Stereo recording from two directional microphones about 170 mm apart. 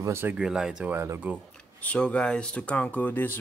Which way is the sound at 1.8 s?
10° left (ahead or behind).